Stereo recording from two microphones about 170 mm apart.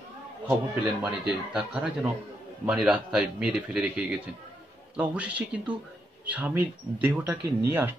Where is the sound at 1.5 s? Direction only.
5° right (ahead or behind).